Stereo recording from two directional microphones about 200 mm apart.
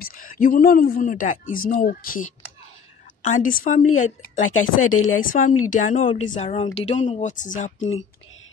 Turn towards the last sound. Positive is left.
turn(degrees=40)  # may be behind; listen again after turning